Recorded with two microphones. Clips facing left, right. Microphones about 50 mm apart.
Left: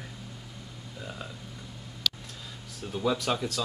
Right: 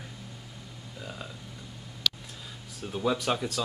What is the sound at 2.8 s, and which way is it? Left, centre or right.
Speech, centre.